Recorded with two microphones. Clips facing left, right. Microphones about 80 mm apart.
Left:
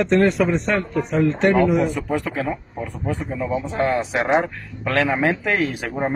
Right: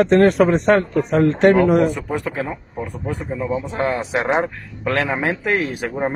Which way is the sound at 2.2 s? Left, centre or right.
Right.